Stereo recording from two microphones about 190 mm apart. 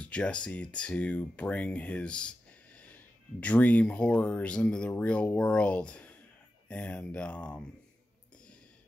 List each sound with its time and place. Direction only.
0.0 s speech: 5° left (ahead or behind)